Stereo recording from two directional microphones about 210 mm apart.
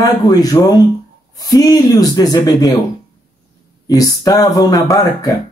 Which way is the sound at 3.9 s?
15° left (ahead or behind).